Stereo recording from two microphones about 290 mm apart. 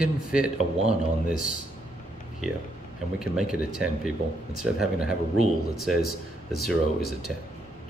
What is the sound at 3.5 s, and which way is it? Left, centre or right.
Speech, centre.